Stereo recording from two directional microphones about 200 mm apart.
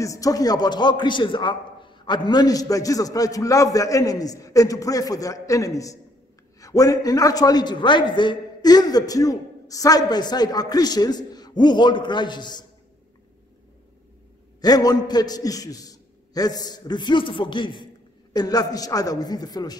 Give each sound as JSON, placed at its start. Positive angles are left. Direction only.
{"t": 0.0, "sound": "a man's voice", "side_deg": 15}
{"t": 14.6, "sound": "a man's voice", "side_deg": 20}